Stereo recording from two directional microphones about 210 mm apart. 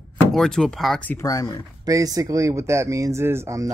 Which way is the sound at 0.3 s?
Centre (ahead or behind).